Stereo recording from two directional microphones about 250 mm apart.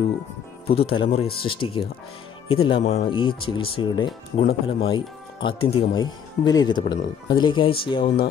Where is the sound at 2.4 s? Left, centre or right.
Left.